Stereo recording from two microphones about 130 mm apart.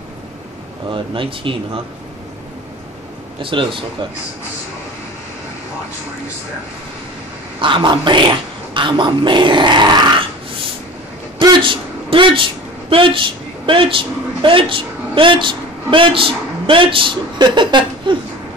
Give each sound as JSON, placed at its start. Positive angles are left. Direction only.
{"t": 0.8, "sound": "speech", "side_deg": -40}
{"t": 3.4, "sound": "speech", "side_deg": -40}
{"t": 7.6, "sound": "speech", "side_deg": -40}
{"t": 11.6, "sound": "speech", "side_deg": -40}